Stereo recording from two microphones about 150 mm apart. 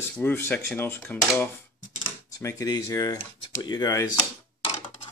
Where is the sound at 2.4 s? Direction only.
20° left (ahead or behind).